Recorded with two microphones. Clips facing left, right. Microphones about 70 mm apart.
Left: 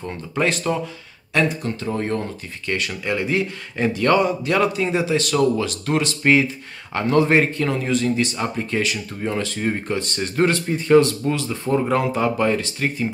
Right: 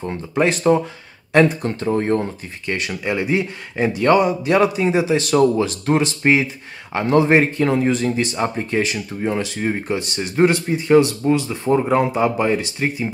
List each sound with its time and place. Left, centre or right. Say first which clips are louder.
0.0 s speech: right 3 dB; centre
1.3 s speech: right 6 dB; right; by 13.1 s centre